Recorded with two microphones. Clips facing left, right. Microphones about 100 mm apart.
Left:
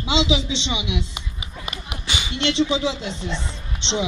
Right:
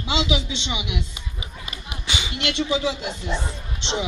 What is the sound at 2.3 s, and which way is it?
Speech, 25° left (ahead or behind).